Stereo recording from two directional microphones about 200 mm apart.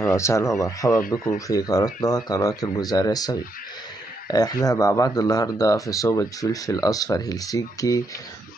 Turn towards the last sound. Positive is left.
turn(degrees=15)  # may be behind; listen again after turning